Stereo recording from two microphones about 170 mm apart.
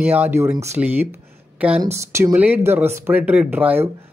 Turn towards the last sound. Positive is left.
turn(degrees=-10)  # may be behind; listen again after turning